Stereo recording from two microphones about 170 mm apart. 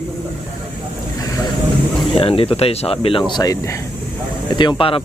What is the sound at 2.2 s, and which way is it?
Speech, 35° left (ahead or behind).